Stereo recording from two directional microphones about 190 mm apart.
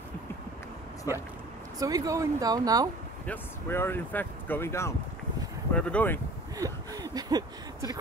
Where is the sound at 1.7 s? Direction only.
20° right (ahead or behind).